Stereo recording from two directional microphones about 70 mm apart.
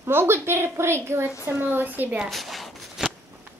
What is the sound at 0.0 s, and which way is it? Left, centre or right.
A woman's voice, right.